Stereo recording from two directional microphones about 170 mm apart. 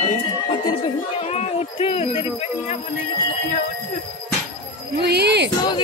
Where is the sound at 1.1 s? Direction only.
40° left (ahead or behind).